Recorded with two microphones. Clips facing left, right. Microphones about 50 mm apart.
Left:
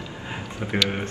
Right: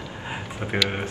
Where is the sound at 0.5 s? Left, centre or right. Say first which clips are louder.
Left 1 dB; right.